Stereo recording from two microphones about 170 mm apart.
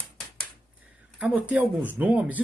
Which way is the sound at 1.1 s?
5° right (ahead or behind).